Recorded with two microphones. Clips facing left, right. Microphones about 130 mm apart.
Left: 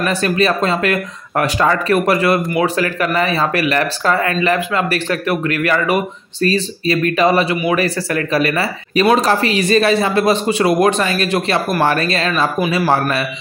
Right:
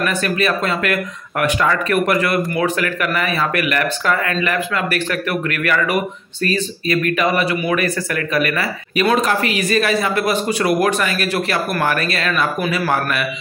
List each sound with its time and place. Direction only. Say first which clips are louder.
0.0 s speech: left 3 dB; 30° left (ahead or behind)